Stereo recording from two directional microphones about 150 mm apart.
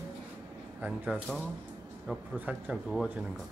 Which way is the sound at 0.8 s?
5° right (ahead or behind).